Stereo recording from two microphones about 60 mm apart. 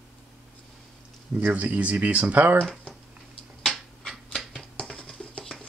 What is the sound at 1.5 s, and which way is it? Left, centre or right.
Speech, right.